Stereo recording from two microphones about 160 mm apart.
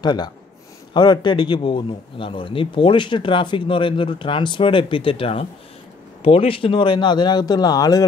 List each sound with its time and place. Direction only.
0.0 s a man's voice: 25° left (ahead or behind)